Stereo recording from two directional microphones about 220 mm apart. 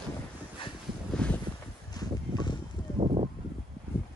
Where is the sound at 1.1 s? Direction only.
5° left (ahead or behind).